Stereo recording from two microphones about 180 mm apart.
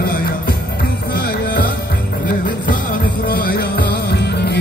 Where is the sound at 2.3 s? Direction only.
50° left (ahead or behind).